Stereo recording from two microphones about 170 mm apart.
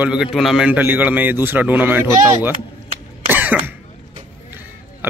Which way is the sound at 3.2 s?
10° right (ahead or behind).